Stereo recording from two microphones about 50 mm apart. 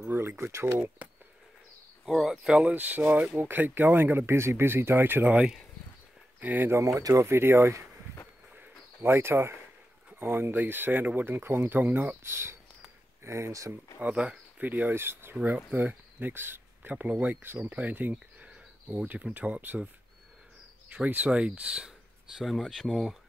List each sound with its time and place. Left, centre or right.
0.1 s speech: right
2.0 s speech: centre
2.6 s speech: right
4.4 s speech: right
6.4 s speech: right
6.7 s speech: right
9.0 s speech: right
12.2 s speech: right
13.2 s speech: right
13.9 s speech: right
14.6 s speech: right
15.4 s speech: right
20.9 s speech: right
22.4 s speech: centre